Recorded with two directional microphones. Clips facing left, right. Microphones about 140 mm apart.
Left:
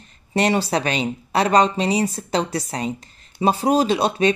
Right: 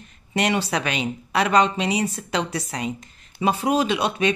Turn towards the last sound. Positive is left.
turn(degrees=35)  # may be behind; listen again after turning